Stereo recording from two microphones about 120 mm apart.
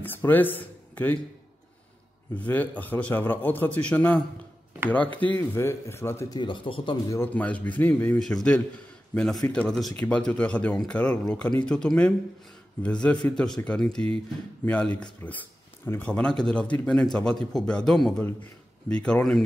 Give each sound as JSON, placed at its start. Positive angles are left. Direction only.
{"t": 0.0, "sound": "speech", "side_deg": 15}
{"t": 2.3, "sound": "speech", "side_deg": 15}
{"t": 6.3, "sound": "speech", "side_deg": 45}
{"t": 7.1, "sound": "a man's voice", "side_deg": 15}